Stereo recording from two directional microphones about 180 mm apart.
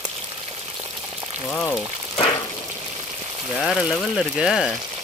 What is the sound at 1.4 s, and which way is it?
Frying, 5° left (ahead or behind).